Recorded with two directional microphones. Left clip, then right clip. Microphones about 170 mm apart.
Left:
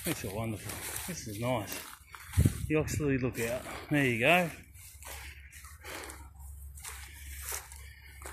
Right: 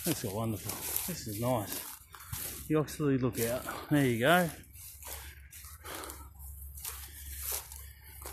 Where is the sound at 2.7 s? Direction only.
15° right (ahead or behind).